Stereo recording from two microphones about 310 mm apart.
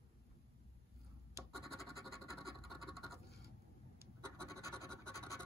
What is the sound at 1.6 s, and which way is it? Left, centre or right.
Scratch, centre.